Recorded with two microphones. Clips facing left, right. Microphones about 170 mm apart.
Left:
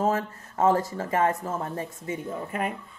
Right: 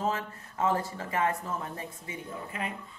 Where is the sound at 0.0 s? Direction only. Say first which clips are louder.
Left 6 dB; 45° left (ahead or behind).